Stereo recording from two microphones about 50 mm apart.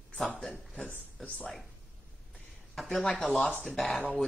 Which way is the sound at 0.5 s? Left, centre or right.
Left.